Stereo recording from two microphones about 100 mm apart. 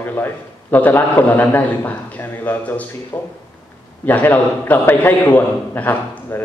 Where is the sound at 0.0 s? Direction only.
20° left (ahead or behind).